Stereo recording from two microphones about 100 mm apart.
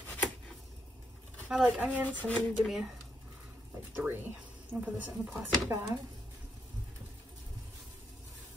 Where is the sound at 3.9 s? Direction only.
20° right (ahead or behind).